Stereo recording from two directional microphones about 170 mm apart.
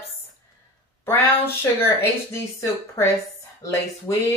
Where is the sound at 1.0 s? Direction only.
15° left (ahead or behind).